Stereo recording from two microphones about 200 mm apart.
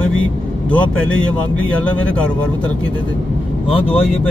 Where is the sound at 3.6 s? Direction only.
30° left (ahead or behind).